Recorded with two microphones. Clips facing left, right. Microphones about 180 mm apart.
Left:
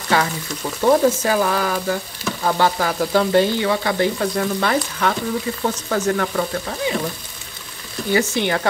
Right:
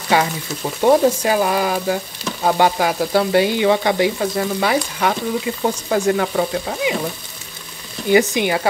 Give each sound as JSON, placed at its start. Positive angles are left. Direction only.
{"t": 0.1, "sound": "frying", "side_deg": -15}
{"t": 4.2, "sound": "frying", "side_deg": -5}
{"t": 8.1, "sound": "frying", "side_deg": -15}